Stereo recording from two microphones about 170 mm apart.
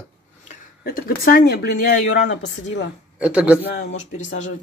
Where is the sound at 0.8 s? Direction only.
60° left (ahead or behind); by 2.2 s 85° left.